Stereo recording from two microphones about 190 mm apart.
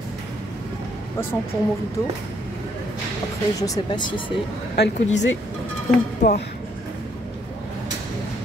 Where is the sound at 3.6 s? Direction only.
20° left (ahead or behind).